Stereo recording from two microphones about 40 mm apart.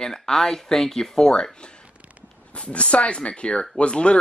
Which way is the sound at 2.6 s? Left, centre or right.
Left.